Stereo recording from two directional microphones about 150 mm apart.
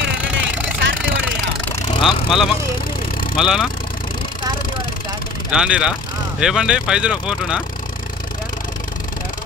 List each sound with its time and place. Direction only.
0.2 s a sound: 10° right (ahead or behind)
2.0 s speech: 35° left (ahead or behind)
3.3 s speech: 5° right (ahead or behind)
5.5 s speech: 5° right (ahead or behind)